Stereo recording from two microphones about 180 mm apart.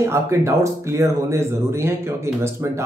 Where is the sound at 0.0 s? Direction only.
15° right (ahead or behind).